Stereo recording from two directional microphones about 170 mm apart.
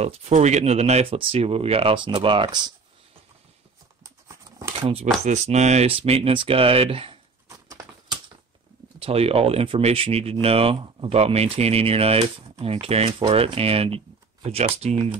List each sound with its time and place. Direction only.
0.0 s speech: 40° right (ahead or behind)
4.6 s shuffling cards: 20° right (ahead or behind)
5.2 s speech: 40° right (ahead or behind)
7.4 s a sound: 20° right (ahead or behind)
9.0 s speech: 35° right (ahead or behind)